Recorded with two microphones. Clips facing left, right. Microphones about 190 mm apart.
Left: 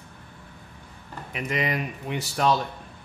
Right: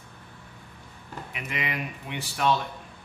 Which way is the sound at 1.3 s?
40° left (ahead or behind).